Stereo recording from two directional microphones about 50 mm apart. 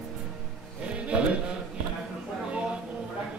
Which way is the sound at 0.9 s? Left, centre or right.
Right.